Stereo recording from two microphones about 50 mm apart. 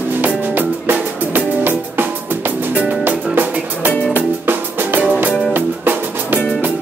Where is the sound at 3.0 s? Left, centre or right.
Right.